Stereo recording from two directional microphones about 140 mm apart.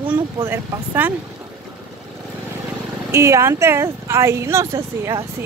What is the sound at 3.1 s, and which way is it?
A woman's voice, 20° right (ahead or behind).